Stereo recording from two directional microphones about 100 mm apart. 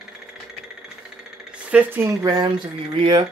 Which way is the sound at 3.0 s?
55° right (ahead or behind).